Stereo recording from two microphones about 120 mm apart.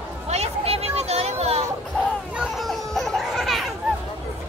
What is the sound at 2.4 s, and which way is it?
Chatter, centre (ahead or behind).